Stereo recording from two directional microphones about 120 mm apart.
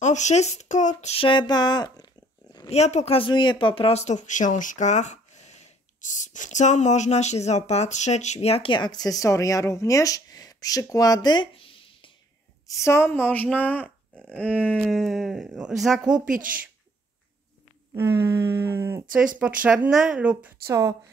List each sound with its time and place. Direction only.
0.0 s speech: 80° left
1.1 s speech: 45° left (ahead or behind)
2.7 s speech: 70° left (ahead or behind)
3.2 s speech: 40° left (ahead or behind)
12.6 s a woman's voice: 25° left (ahead or behind)
13.8 s a sound: 15° right (ahead or behind)
14.8 s speech: centre (ahead or behind)
17.9 s speech: 20° right (ahead or behind)
19.1 s speech: 10° right (ahead or behind)